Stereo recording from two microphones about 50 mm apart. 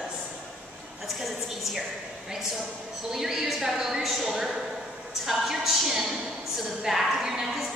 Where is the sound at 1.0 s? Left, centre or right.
Centre.